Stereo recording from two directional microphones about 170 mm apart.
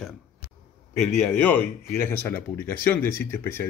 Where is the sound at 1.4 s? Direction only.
10° left (ahead or behind).